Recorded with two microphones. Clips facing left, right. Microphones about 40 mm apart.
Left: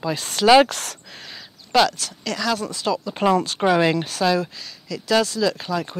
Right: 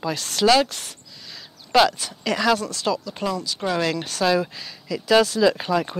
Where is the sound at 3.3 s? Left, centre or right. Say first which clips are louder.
Left 8 dB; left.